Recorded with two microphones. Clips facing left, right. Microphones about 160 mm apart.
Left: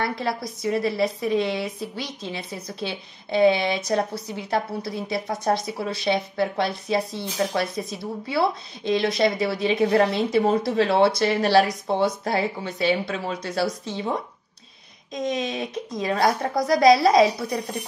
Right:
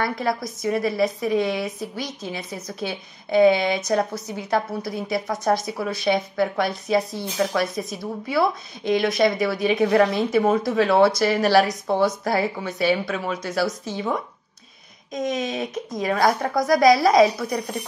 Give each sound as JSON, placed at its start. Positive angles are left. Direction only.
{"t": 0.0, "sound": "speech", "side_deg": 25}
{"t": 15.2, "sound": "speech", "side_deg": 30}